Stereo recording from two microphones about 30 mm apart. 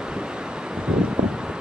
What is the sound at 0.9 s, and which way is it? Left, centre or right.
Wind, right.